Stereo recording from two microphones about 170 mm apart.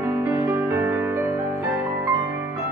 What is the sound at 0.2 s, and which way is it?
Music, 15° right (ahead or behind).